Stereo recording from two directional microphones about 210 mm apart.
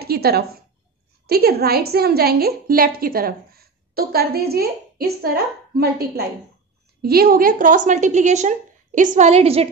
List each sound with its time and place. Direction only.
0.0 s a woman's voice: 50° right (ahead or behind); by 9.7 s 30° right (ahead or behind)